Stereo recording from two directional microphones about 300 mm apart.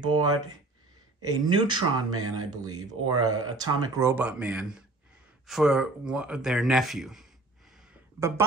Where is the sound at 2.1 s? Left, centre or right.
Right.